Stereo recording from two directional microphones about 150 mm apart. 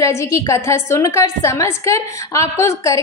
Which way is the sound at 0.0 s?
20° left (ahead or behind).